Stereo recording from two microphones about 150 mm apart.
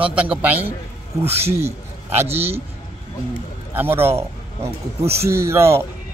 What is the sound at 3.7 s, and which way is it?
Speech, 15° right (ahead or behind).